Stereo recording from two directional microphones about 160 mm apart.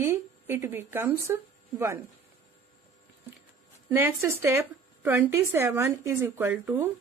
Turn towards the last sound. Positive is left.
turn(degrees=-15)  # may be behind; listen again after turning